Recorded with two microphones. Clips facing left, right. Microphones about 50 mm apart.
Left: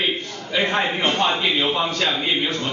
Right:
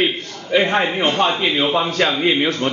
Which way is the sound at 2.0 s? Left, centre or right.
Right.